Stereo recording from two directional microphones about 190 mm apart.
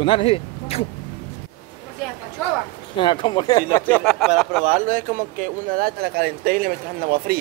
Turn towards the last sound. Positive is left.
turn(degrees=-50)  # may be behind; listen again after turning